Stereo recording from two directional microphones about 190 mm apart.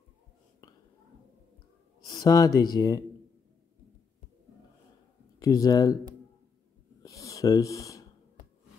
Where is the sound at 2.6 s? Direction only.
20° left (ahead or behind).